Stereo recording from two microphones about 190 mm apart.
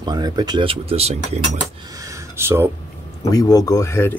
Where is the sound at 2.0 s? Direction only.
15° right (ahead or behind).